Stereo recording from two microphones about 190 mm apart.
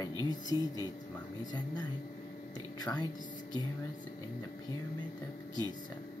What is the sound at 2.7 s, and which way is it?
Speech, 20° left (ahead or behind).